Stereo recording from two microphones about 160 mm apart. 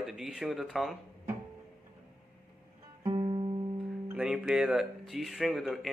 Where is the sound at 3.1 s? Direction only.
35° right (ahead or behind).